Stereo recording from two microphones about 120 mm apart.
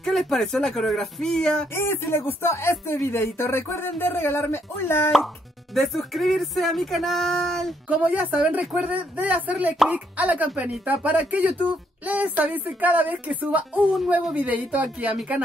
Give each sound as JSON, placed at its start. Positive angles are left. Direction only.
{"t": 0.0, "sound": "speech", "side_deg": 0}
{"t": 1.8, "sound": "speech", "side_deg": 20}
{"t": 5.8, "sound": "speech", "side_deg": 0}
{"t": 7.9, "sound": "speech", "side_deg": -10}